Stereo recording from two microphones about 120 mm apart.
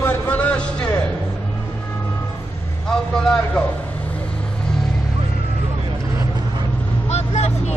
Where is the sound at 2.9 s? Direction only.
5° left (ahead or behind).